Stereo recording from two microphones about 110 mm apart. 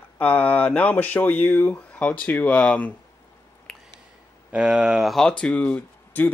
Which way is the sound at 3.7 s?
5° left (ahead or behind).